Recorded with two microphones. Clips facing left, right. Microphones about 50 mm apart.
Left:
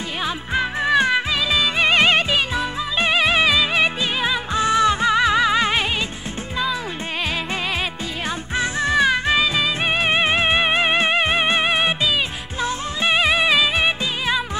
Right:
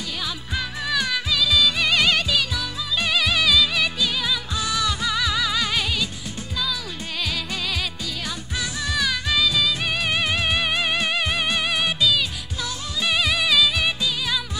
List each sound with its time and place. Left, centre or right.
0.2 s music: left
8.5 s music: left